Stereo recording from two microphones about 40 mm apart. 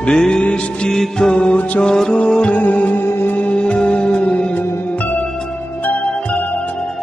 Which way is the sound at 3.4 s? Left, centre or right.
Left.